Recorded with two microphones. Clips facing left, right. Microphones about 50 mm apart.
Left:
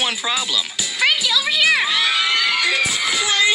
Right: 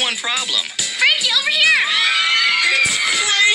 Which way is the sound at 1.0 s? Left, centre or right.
Right.